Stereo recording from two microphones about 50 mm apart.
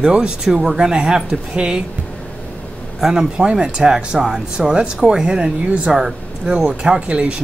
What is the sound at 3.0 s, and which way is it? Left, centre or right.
Speech, centre.